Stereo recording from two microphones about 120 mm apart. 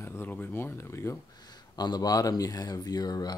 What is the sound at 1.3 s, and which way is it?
Speech, 35° left (ahead or behind).